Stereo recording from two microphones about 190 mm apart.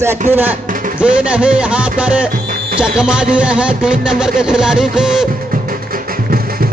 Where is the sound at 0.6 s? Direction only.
45° right (ahead or behind).